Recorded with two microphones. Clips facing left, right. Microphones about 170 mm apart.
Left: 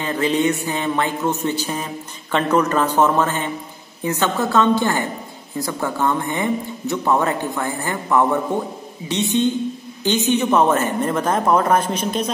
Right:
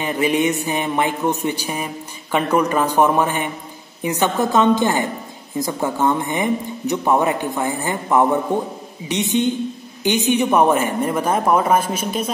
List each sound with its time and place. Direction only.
0.0 s speech: 15° right (ahead or behind)